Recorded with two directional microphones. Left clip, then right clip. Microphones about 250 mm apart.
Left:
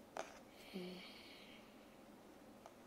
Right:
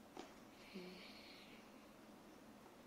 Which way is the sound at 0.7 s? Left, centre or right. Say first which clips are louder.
Left 4 dB; left.